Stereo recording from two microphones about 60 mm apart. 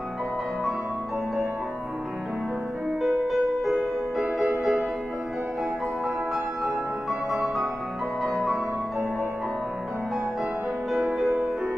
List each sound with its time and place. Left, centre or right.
3.0 s music: centre
6.0 s music: centre
10.9 s music: centre